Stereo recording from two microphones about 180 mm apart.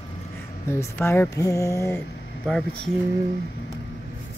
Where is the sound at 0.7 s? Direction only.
15° left (ahead or behind).